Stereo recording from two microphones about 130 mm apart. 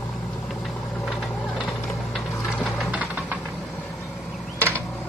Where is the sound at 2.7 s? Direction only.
10° right (ahead or behind).